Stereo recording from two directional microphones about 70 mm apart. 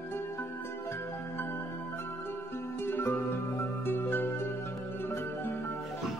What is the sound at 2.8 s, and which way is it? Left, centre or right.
Music, left.